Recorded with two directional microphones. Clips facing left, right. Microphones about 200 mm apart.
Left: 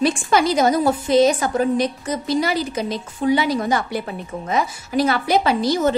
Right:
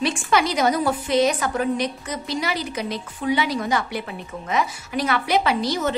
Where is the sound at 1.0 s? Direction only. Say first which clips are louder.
Left 5 dB; 30° left (ahead or behind).